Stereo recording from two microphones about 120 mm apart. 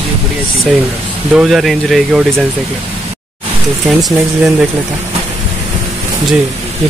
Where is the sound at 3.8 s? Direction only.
5° right (ahead or behind).